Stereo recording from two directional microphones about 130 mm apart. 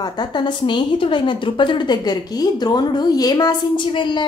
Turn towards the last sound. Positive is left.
turn(degrees=35)  # may be behind; listen again after turning